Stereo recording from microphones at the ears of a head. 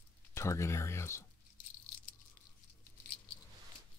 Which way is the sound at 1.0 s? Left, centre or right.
Left.